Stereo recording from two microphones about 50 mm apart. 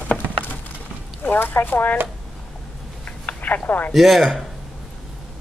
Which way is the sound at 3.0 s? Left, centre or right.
Left.